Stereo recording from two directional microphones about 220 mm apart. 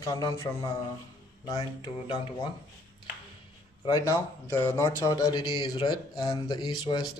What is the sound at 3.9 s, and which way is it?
Speech, 15° left (ahead or behind).